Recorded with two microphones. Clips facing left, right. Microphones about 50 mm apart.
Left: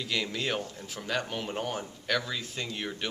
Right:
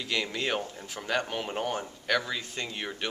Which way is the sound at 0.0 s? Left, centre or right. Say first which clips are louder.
Right 1 dB; centre.